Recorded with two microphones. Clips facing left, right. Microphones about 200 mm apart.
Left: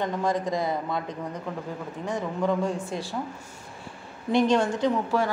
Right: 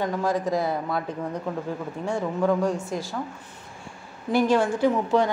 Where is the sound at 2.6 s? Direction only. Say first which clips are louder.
Right 3 dB; centre (ahead or behind).